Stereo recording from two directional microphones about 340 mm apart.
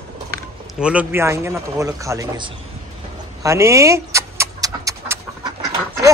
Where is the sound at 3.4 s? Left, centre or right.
Centre.